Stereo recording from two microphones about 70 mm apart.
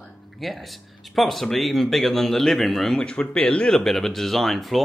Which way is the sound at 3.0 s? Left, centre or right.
Centre.